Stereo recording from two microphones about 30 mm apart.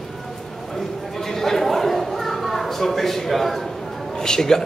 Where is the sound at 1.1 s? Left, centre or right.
Centre.